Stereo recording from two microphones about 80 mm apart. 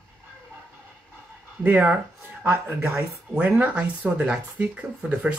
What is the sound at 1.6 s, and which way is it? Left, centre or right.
Speech, centre.